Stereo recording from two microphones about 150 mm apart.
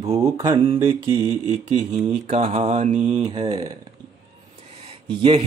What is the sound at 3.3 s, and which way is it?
Mantra, 30° right (ahead or behind).